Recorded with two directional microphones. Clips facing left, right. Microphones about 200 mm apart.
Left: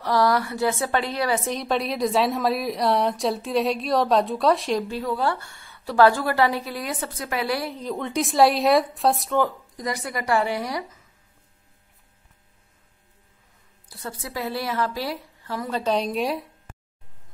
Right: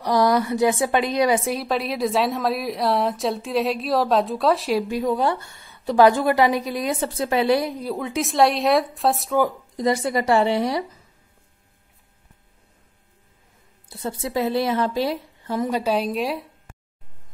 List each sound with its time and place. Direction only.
0.0 s a woman's voice: 15° right (ahead or behind)
4.8 s a woman's voice: 15° right (ahead or behind); by 9.4 s centre (ahead or behind)
9.8 s speech: 25° right (ahead or behind)
13.8 s speech: 25° right (ahead or behind)
15.8 s a woman's voice: 5° right (ahead or behind)